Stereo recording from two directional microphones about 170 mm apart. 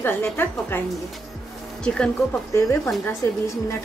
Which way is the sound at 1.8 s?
5° left (ahead or behind).